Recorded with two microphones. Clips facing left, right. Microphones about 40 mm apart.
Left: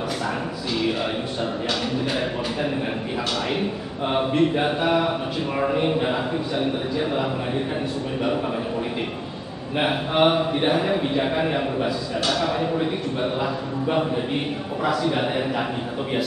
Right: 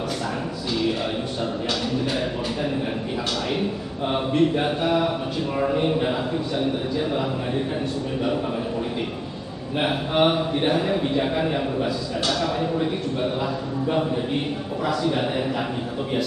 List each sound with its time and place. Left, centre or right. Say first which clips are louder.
0.8 s speech: left 1 dB; centre
3.3 s a man's voice: even; centre
9.8 s a man's voice: left 1 dB; centre